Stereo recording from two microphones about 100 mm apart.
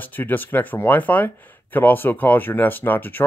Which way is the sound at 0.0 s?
20° left (ahead or behind).